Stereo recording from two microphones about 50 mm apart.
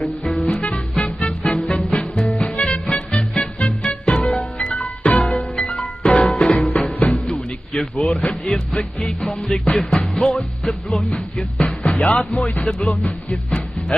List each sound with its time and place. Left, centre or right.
0.0 s music: centre
0.5 s music: centre
2.1 s music: left
2.6 s music: centre; by 6.3 s left
6.3 s music: centre
6.6 s music: left
8.0 s music: centre
10.9 s music: left
11.3 s music: centre
12.3 s speech: left
12.5 s music: centre